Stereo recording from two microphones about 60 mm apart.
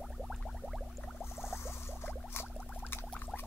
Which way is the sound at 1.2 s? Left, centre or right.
Left.